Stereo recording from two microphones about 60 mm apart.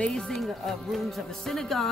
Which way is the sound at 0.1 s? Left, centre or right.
Centre.